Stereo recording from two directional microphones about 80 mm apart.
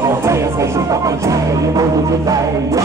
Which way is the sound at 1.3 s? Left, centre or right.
Right.